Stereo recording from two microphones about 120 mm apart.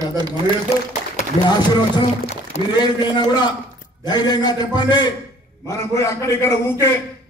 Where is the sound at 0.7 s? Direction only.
65° left (ahead or behind).